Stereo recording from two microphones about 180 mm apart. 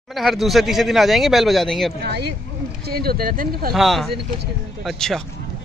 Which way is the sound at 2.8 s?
60° right (ahead or behind).